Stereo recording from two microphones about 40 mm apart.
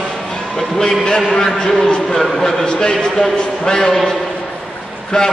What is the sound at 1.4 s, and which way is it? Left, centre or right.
A man's voice, centre.